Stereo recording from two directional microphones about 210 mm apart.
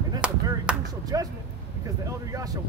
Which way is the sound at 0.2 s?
5° right (ahead or behind).